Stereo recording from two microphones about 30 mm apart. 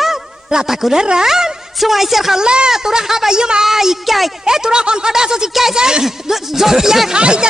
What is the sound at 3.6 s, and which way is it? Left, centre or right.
Speech, centre.